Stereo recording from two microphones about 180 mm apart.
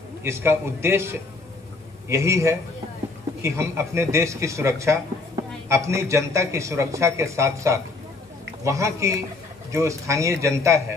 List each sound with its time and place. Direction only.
0.2 s a man's voice: 15° right (ahead or behind)